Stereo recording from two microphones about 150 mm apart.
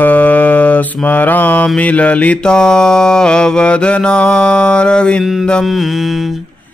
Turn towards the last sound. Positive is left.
turn(degrees=0)  # may be behind; listen again after turning